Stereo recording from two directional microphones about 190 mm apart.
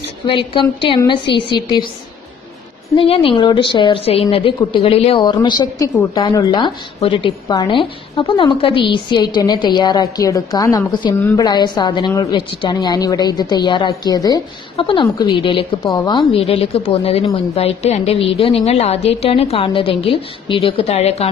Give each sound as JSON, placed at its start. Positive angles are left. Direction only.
{"t": 0.3, "sound": "a woman's voice", "side_deg": 25}
{"t": 3.0, "sound": "a woman's voice", "side_deg": 30}